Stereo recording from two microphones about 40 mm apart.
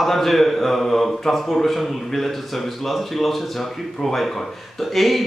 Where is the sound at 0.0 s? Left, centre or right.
Centre.